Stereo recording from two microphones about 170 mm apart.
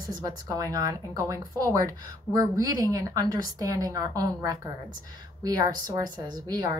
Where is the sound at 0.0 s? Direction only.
20° right (ahead or behind).